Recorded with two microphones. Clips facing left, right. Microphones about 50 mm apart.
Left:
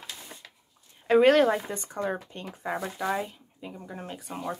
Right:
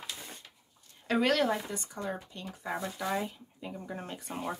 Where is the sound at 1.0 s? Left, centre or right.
Left.